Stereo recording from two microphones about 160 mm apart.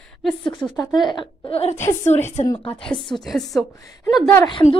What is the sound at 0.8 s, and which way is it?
Speech, 25° left (ahead or behind).